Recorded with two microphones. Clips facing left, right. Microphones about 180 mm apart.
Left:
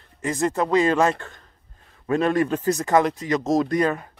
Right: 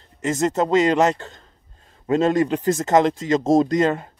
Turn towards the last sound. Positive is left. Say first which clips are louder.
# right 3 dB
turn(degrees=-25)  # may be behind; listen again after turning